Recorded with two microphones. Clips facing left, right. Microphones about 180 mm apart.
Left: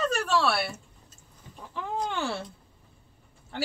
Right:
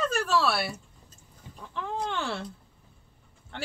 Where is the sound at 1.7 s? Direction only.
5° left (ahead or behind).